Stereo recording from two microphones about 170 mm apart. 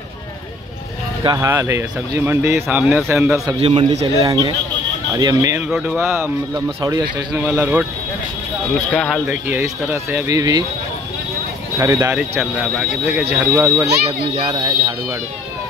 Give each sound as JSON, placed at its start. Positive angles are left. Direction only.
{"t": 1.2, "sound": "speech", "side_deg": -20}
{"t": 3.4, "sound": "a man's voice", "side_deg": -30}
{"t": 4.2, "sound": "speech", "side_deg": -25}
{"t": 5.7, "sound": "speech", "side_deg": -5}
{"t": 7.3, "sound": "speech", "side_deg": -15}
{"t": 8.9, "sound": "speech", "side_deg": 5}
{"t": 9.3, "sound": "speech", "side_deg": -15}
{"t": 11.8, "sound": "speech", "side_deg": -20}
{"t": 12.2, "sound": "speech", "side_deg": -5}
{"t": 14.3, "sound": "speech", "side_deg": -25}